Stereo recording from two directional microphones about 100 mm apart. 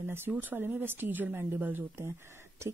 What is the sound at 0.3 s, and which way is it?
A woman's voice, 20° right (ahead or behind).